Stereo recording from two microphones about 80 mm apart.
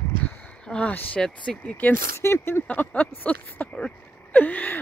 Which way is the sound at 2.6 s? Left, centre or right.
Left.